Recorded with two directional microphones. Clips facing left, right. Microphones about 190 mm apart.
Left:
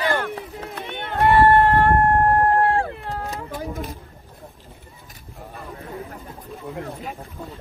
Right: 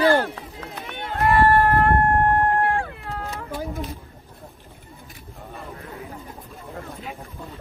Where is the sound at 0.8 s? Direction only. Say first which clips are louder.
Left 3 dB; 30° left (ahead or behind).